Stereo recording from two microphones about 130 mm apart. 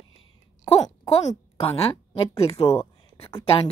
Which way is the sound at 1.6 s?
45° left (ahead or behind).